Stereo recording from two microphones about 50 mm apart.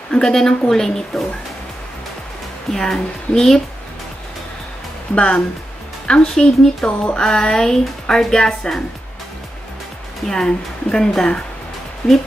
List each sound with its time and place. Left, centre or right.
0.1 s a woman's voice: centre
2.7 s a woman's voice: centre
5.1 s a woman's voice: left
10.2 s a woman's voice: centre